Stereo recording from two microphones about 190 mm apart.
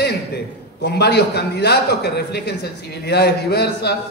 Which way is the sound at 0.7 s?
60° left (ahead or behind).